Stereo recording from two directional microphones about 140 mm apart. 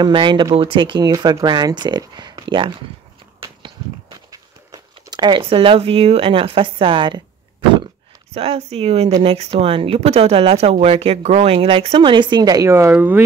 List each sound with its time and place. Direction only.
0.0 s speech: 35° right (ahead or behind)
4.3 s speech: 25° right (ahead or behind)
8.3 s speech: 45° right (ahead or behind); by 13.2 s 15° right (ahead or behind)